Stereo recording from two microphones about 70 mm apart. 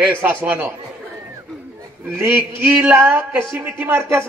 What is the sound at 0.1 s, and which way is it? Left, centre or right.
Speech, right.